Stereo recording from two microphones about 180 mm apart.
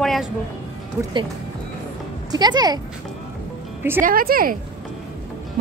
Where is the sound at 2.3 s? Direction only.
25° right (ahead or behind).